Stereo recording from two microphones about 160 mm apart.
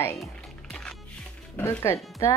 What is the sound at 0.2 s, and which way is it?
Music, centre (ahead or behind).